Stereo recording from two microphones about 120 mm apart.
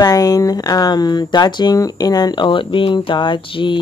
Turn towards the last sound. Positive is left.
turn(degrees=45)  # may be behind; listen again after turning